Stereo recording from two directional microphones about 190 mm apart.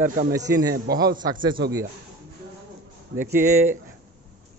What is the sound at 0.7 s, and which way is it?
Speech, 55° right (ahead or behind).